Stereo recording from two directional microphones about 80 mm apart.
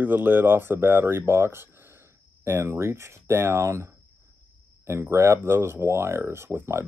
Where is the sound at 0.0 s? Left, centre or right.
Right.